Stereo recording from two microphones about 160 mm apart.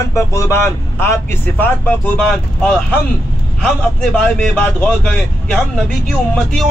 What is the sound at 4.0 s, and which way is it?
A man's voice, 5° left (ahead or behind).